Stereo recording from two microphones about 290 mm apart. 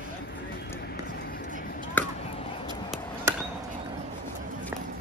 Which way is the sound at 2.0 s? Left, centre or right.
Centre.